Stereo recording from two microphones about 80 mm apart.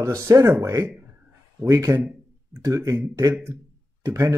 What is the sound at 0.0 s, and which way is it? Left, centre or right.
Speech, right.